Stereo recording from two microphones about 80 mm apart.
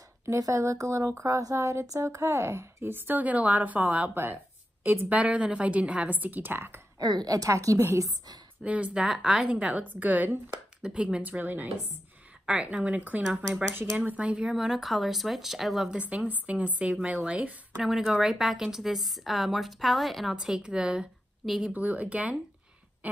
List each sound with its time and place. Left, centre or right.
0.2 s a woman's voice: right
7.0 s a woman's voice: right
8.6 s a woman's voice: centre
13.7 s speech: right
13.9 s a woman's voice: centre
15.9 s a woman's voice: centre
21.7 s a woman's voice: centre